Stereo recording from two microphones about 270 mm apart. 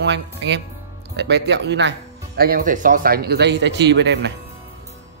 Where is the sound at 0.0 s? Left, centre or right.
Right.